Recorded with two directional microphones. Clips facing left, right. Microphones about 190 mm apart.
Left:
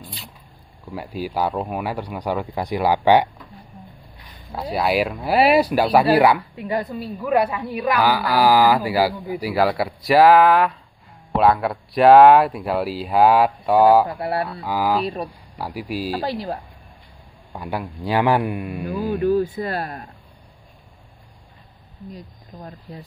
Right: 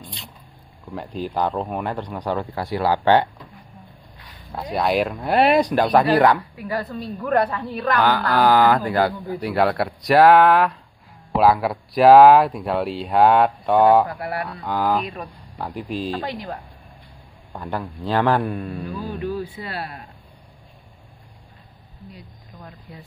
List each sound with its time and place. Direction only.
0.0 s zipper: 5° left (ahead or behind)
0.9 s a woman's voice: 5° left (ahead or behind)
4.5 s a woman's voice: 5° left (ahead or behind)
6.5 s a woman's voice: 20° left (ahead or behind); by 14.0 s 5° left (ahead or behind)
14.0 s speech: 25° left (ahead or behind)
14.5 s speech: 5° left (ahead or behind)
16.2 s speech: 35° left (ahead or behind)
17.6 s a woman's voice: 10° left (ahead or behind)
19.1 s speech: 45° left (ahead or behind)
22.6 s speech: 35° left (ahead or behind)